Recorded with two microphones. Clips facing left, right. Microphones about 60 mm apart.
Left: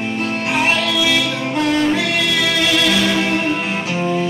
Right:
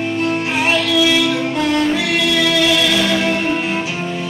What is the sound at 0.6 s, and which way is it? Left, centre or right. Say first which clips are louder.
Music: right 2 dB; left.